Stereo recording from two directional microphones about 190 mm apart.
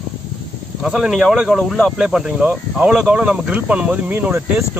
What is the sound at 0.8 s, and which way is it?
Speech, 5° right (ahead or behind).